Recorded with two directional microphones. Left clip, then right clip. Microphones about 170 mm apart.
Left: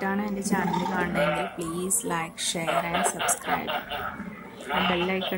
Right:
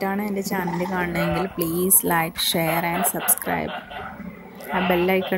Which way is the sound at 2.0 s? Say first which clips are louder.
Right 8 dB; 25° right (ahead or behind).